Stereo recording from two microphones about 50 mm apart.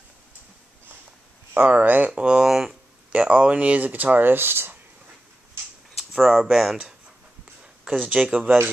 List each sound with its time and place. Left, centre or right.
1.5 s speech: right
2.1 s speech: centre
2.4 s speech: centre
3.1 s speech: right
5.9 s a sound: centre
6.5 s speech: centre
8.1 s speech: right